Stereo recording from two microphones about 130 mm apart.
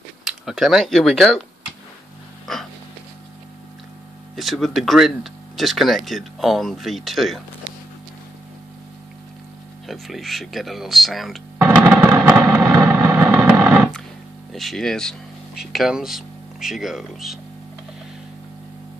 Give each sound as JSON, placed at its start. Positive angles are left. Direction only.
{"t": 0.2, "sound": "speech", "side_deg": -5}
{"t": 2.5, "sound": "a sound", "side_deg": 0}
{"t": 4.4, "sound": "speech", "side_deg": 0}
{"t": 9.8, "sound": "speech", "side_deg": 0}
{"t": 11.5, "sound": "a sound", "side_deg": -20}
{"t": 14.5, "sound": "speech", "side_deg": 0}